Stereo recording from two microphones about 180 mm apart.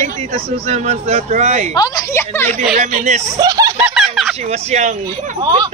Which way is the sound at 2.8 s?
40° right (ahead or behind).